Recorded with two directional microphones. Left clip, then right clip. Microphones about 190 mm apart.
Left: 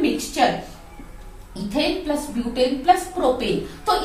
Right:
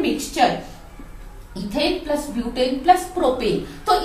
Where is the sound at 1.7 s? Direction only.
10° left (ahead or behind).